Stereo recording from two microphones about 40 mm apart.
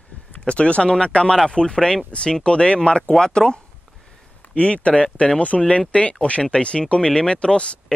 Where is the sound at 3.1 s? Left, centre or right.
Centre.